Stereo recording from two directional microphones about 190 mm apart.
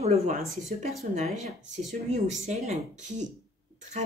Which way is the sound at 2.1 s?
35° right (ahead or behind).